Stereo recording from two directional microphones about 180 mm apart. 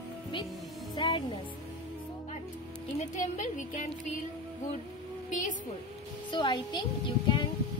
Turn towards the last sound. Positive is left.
turn(degrees=25)  # may be behind; listen again after turning